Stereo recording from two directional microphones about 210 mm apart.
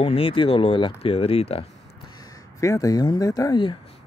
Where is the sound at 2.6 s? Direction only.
15° left (ahead or behind).